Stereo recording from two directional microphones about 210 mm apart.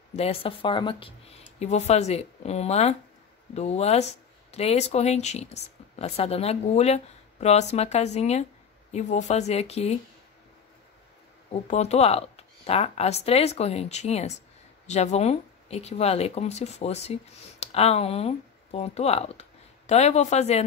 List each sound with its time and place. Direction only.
0.1 s speech: 30° left (ahead or behind)
11.5 s speech: 30° left (ahead or behind)